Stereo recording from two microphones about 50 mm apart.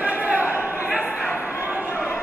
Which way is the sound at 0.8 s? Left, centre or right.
Right.